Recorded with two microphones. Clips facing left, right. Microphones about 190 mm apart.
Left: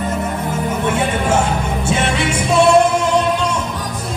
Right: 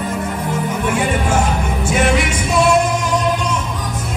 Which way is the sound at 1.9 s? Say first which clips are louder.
Right 3 dB; 25° left (ahead or behind).